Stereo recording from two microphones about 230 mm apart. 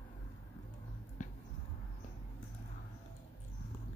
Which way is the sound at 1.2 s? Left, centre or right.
Left.